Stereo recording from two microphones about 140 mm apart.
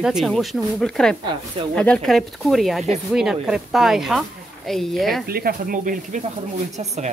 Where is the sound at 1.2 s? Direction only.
35° right (ahead or behind).